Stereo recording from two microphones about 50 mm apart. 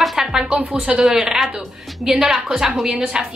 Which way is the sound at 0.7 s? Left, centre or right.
Centre.